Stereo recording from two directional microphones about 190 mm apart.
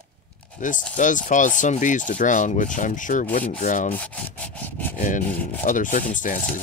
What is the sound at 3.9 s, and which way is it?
Wood, 10° left (ahead or behind).